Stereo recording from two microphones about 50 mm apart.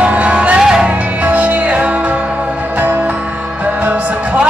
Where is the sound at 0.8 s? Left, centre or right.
Right.